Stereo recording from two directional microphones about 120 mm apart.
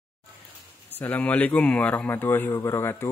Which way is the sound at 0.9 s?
15° left (ahead or behind).